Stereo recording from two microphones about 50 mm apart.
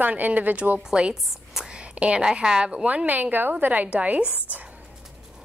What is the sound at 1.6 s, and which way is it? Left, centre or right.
A woman's voice, centre.